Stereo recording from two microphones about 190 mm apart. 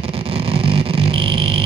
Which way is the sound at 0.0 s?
30° right (ahead or behind).